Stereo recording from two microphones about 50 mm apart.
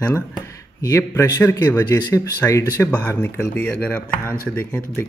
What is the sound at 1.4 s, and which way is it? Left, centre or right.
Speech, left.